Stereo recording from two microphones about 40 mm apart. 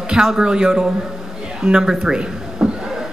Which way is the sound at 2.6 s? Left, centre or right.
Centre.